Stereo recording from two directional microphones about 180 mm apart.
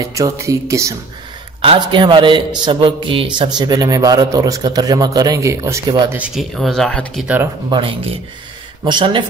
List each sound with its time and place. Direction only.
0.0 s speech: 20° right (ahead or behind)
1.6 s a man's voice: 30° right (ahead or behind); by 7.2 s 5° left (ahead or behind)
7.7 s a man's voice: 30° right (ahead or behind)